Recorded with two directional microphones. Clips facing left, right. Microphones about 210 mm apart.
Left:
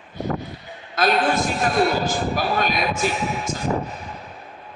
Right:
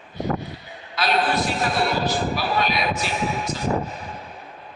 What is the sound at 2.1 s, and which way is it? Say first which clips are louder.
Music: left 1 dB; 45° left (ahead or behind).